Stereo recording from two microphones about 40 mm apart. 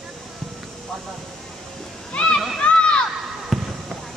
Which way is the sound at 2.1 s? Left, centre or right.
Left.